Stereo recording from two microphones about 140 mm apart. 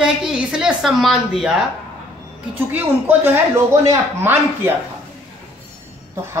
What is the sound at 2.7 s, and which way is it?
A woman's voice, 15° right (ahead or behind).